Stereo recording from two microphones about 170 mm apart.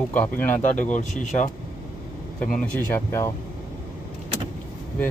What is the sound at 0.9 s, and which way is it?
Speech, 45° left (ahead or behind).